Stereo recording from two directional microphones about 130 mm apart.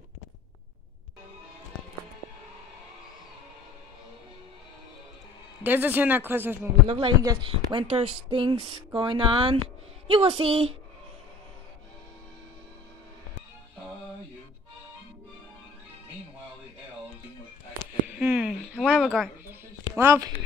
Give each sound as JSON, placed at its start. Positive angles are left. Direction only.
{"t": 5.6, "sound": "speech", "side_deg": -15}
{"t": 6.9, "sound": "speech", "side_deg": -40}
{"t": 7.2, "sound": "a sound", "side_deg": -40}
{"t": 10.0, "sound": "speech", "side_deg": -45}
{"t": 18.1, "sound": "a sound", "side_deg": -10}
{"t": 20.0, "sound": "speech", "side_deg": -25}